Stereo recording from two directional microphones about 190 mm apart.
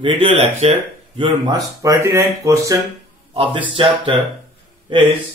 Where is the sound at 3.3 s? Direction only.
30° right (ahead or behind).